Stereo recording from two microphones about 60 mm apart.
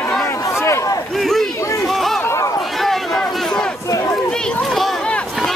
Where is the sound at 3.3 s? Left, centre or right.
Centre.